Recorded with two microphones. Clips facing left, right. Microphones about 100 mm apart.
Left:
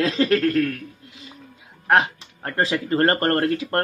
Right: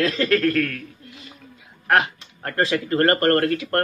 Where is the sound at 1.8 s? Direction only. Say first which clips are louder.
Left 1 dB; 25° left (ahead or behind).